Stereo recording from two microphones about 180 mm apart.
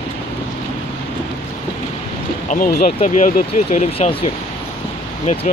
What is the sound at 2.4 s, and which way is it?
Speech, 45° left (ahead or behind).